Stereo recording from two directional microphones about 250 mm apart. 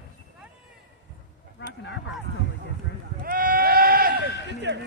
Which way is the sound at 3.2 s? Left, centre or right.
Right.